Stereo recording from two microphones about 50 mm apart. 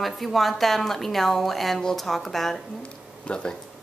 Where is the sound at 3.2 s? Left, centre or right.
Centre.